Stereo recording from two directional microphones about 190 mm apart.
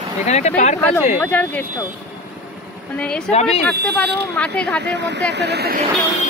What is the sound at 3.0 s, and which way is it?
Speech, 5° left (ahead or behind).